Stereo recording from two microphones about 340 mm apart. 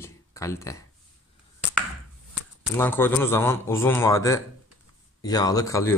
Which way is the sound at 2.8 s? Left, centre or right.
Centre.